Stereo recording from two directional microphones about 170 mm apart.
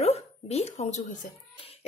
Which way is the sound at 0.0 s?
40° left (ahead or behind).